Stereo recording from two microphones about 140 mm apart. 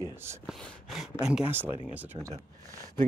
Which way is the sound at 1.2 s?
10° right (ahead or behind).